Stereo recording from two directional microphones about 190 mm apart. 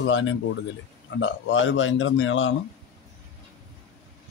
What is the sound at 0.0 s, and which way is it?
Speech, 80° left.